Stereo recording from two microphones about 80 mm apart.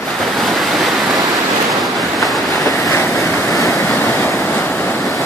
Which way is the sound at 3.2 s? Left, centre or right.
Left.